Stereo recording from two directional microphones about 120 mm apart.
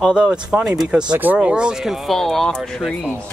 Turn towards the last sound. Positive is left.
turn(degrees=5)  # may be behind; listen again after turning